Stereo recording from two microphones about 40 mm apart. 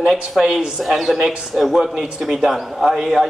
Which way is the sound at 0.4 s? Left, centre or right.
Centre.